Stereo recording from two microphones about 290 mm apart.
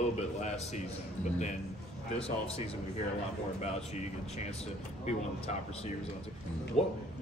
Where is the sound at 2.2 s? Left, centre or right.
Centre.